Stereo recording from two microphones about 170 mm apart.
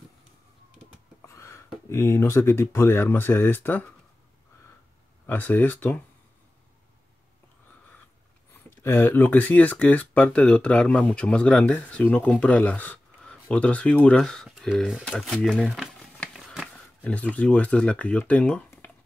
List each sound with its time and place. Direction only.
1.2 s a sound: 15° left (ahead or behind)
1.9 s speech: 15° left (ahead or behind)
5.2 s speech: 10° left (ahead or behind)
8.8 s speech: 10° left (ahead or behind)